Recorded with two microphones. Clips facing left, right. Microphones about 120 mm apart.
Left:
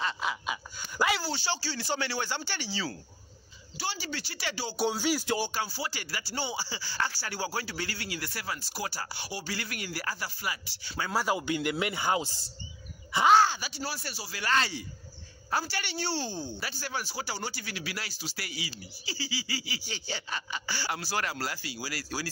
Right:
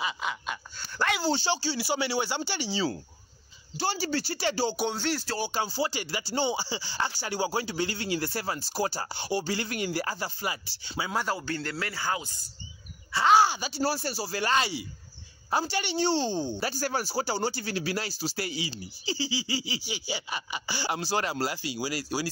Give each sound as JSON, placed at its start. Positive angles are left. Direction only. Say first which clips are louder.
{"t": 0.0, "sound": "a sound", "louder": "even", "side_deg": 0}
{"t": 1.2, "sound": "speech", "louder": "right 6 dB", "side_deg": -25}
{"t": 3.8, "sound": "speech", "louder": "right 7 dB", "side_deg": -40}
{"t": 4.7, "sound": "speech", "louder": "left 1 dB", "side_deg": 5}
{"t": 5.5, "sound": "speech", "louder": "right 5 dB", "side_deg": -25}
{"t": 11.1, "sound": "speech", "louder": "left 3 dB", "side_deg": 10}
{"t": 13.4, "sound": "speech", "louder": "right 2 dB", "side_deg": -15}
{"t": 13.7, "sound": "speech", "louder": "right 8 dB", "side_deg": -35}
{"t": 14.5, "sound": "speech", "louder": "left 1 dB", "side_deg": -15}
{"t": 16.6, "sound": "speech", "louder": "right 6 dB", "side_deg": -40}
{"t": 19.9, "sound": "speech", "louder": "even", "side_deg": -10}